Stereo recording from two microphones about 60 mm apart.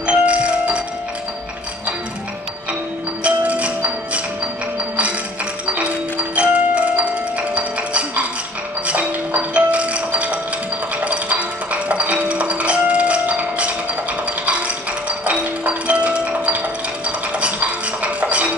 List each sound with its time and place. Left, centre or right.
0.0 s music: centre
3.3 s music: right
5.8 s music: right